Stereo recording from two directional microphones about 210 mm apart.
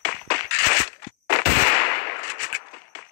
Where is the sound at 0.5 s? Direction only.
45° left (ahead or behind).